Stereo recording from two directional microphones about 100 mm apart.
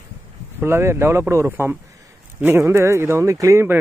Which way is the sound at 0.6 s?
25° right (ahead or behind).